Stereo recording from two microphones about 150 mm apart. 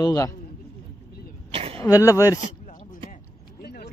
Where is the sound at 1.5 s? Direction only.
40° right (ahead or behind).